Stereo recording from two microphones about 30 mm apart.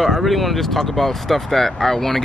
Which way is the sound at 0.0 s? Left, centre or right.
Centre.